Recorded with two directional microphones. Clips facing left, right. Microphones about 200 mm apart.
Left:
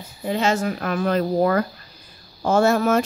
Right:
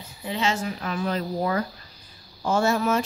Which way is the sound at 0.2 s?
45° left (ahead or behind).